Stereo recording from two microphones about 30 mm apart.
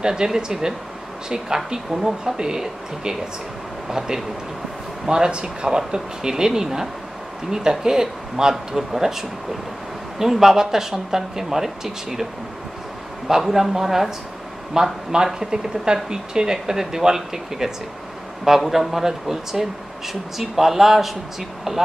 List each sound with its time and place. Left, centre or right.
0.0 s speech: right
5.0 s speech: right
13.4 s speech: centre
14.7 s speech: right